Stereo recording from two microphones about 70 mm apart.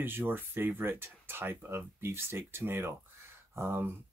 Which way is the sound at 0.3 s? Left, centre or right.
Right.